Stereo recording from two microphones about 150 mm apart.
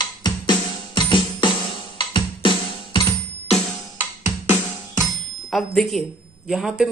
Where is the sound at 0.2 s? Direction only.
30° left (ahead or behind).